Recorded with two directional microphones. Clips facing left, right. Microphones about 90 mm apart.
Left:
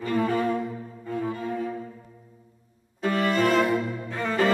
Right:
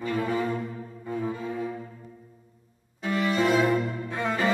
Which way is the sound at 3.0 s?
50° left (ahead or behind).